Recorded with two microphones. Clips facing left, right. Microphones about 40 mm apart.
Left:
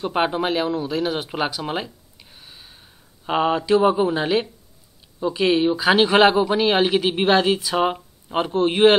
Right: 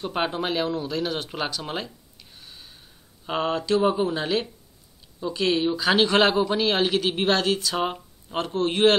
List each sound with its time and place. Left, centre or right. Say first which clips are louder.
0.0 s speech: left 5 dB; centre